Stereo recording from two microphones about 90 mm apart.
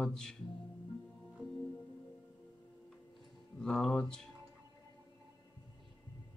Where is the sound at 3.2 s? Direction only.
5° left (ahead or behind).